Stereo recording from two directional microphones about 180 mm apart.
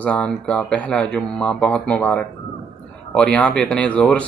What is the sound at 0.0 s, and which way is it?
Speech, 5° left (ahead or behind).